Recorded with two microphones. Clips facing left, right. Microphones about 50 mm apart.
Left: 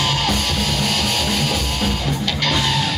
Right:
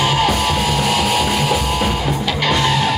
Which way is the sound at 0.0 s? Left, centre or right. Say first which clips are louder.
Right 5 dB; centre.